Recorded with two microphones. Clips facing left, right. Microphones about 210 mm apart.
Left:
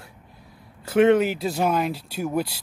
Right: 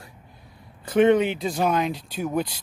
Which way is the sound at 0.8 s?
5° left (ahead or behind).